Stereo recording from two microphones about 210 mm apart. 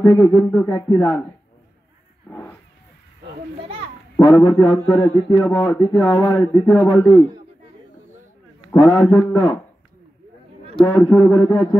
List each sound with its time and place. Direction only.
0.0 s a man's voice: 15° left (ahead or behind)
0.7 s a man's voice: 20° left (ahead or behind)
2.2 s vehicle: 10° left (ahead or behind)
4.2 s a man's voice: 15° left (ahead or behind)
8.7 s a man's voice: 10° left (ahead or behind)
10.9 s a man's voice: 10° left (ahead or behind)